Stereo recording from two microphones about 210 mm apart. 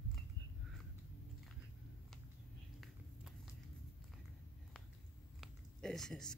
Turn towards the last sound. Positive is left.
turn(degrees=0)  # may be behind; listen again after turning